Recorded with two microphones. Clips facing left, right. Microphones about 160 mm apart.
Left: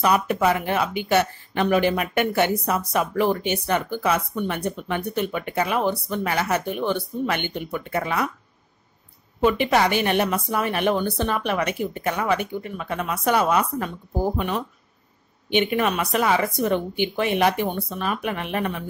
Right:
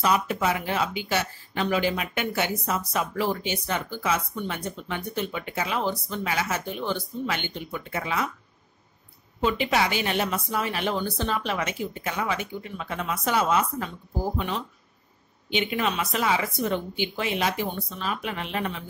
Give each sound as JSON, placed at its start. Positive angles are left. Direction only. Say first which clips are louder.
{"t": 0.0, "sound": "speech", "louder": "left 4 dB", "side_deg": 60}
{"t": 9.4, "sound": "speech", "louder": "left 5 dB", "side_deg": 55}